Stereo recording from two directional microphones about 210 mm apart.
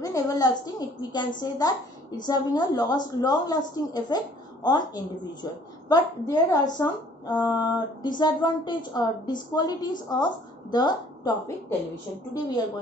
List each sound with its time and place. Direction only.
0.0 s a woman's voice: 15° left (ahead or behind)